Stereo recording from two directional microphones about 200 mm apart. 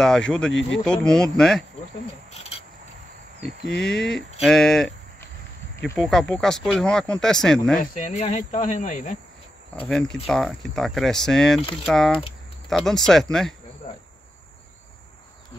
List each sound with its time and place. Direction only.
0.0 s speech: 5° left (ahead or behind)
0.5 s speech: 70° left (ahead or behind)
0.8 s speech: 5° left (ahead or behind)
3.6 s speech: centre (ahead or behind)
7.8 s speech: 40° left (ahead or behind)
9.8 s speech: centre (ahead or behind)